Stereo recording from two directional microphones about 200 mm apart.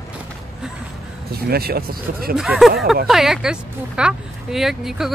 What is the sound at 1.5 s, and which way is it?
Speech, 50° right (ahead or behind).